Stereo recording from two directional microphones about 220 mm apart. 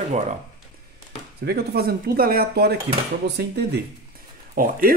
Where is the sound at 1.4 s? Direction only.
45° right (ahead or behind).